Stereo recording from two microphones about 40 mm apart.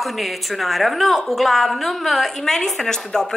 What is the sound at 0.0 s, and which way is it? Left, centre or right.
A woman's voice, centre.